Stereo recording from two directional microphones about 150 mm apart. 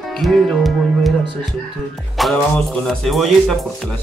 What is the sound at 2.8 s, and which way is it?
Speech, centre (ahead or behind).